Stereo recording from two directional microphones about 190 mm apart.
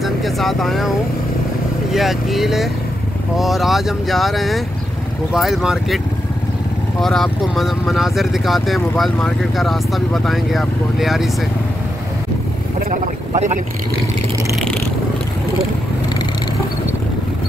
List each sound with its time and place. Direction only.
0.0 s speech: centre (ahead or behind)
7.0 s speech: centre (ahead or behind)
12.9 s speech: 40° right (ahead or behind)
14.5 s a sound: 5° left (ahead or behind)